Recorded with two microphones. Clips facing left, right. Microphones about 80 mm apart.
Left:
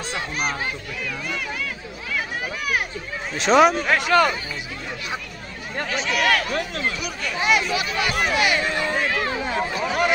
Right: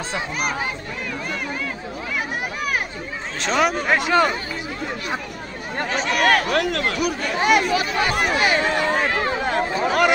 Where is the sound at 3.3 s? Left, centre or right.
Centre.